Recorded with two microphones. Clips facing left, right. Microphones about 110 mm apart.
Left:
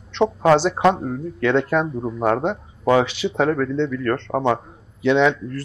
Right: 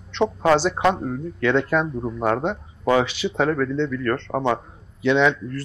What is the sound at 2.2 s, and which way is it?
Speech, 35° left (ahead or behind).